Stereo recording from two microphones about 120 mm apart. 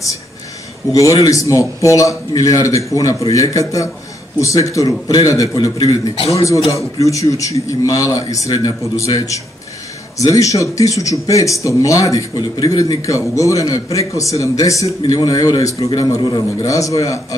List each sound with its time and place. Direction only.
0.9 s speech: 25° left (ahead or behind)